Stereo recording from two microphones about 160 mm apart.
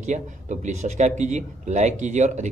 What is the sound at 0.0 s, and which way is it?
Speech, 50° right (ahead or behind).